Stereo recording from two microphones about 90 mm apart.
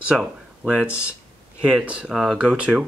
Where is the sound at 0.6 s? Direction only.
10° right (ahead or behind).